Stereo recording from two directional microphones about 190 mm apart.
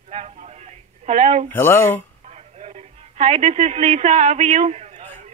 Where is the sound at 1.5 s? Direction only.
15° left (ahead or behind).